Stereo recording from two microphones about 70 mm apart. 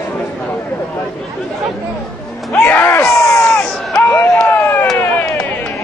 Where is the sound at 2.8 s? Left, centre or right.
Left.